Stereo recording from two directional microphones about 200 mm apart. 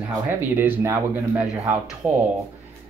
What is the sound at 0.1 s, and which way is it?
A man's voice, 10° right (ahead or behind).